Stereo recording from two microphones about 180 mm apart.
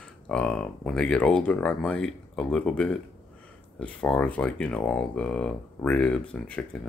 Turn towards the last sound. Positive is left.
turn(degrees=5)  # may be behind; listen again after turning